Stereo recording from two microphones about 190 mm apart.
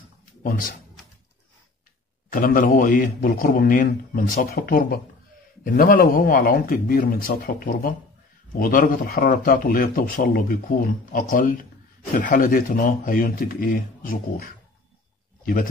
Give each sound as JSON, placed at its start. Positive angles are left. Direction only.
{"t": 0.4, "sound": "speech", "side_deg": 50}
{"t": 2.3, "sound": "a man's voice", "side_deg": 45}